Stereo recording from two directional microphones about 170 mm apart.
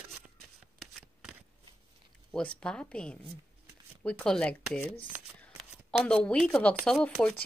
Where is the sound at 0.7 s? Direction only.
5° right (ahead or behind).